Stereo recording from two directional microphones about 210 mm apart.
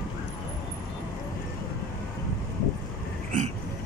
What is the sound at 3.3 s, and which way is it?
Hiccup, 40° right (ahead or behind).